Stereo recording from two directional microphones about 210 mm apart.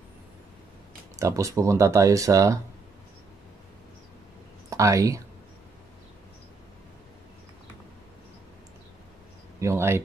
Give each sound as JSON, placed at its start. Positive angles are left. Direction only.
{"t": 1.2, "sound": "speech", "side_deg": -15}
{"t": 4.6, "sound": "speech", "side_deg": -15}
{"t": 9.6, "sound": "speech", "side_deg": -10}